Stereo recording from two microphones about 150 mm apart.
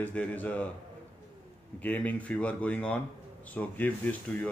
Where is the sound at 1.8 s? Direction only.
10° left (ahead or behind).